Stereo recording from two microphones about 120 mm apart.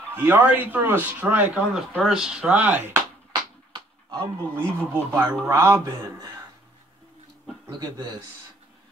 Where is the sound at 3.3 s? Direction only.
40° right (ahead or behind).